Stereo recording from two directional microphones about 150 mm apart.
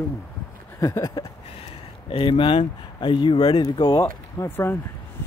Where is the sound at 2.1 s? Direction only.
35° left (ahead or behind).